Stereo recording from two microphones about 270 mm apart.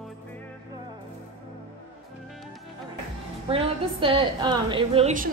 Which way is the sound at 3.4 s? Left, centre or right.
Right.